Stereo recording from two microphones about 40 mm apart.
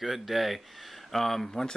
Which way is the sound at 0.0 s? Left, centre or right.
Centre.